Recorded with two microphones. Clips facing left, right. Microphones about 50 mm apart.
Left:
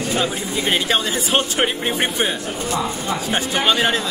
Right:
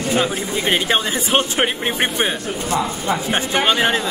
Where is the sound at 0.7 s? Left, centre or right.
Centre.